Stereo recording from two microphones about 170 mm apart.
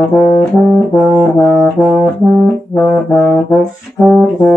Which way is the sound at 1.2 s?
Centre (ahead or behind).